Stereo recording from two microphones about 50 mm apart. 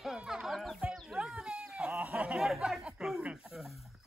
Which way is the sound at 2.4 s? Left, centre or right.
Centre.